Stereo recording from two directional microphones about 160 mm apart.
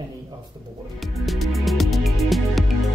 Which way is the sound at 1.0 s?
Centre (ahead or behind).